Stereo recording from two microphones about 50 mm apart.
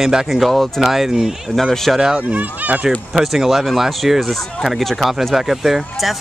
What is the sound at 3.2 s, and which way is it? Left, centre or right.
Speech, centre.